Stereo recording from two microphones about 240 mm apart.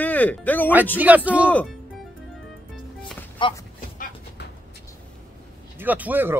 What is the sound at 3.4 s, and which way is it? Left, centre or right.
Speech, centre.